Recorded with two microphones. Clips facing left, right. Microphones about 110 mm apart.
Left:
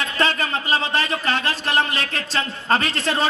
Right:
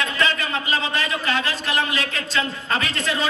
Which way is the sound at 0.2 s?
40° left (ahead or behind).